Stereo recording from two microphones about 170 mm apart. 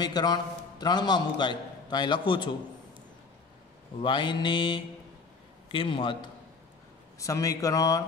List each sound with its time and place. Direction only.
0.0 s a man's voice: 25° left (ahead or behind)
4.0 s a man's voice: 30° left (ahead or behind)
7.2 s a man's voice: 20° left (ahead or behind)